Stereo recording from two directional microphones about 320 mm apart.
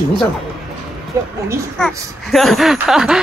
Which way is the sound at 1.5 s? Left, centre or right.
Centre.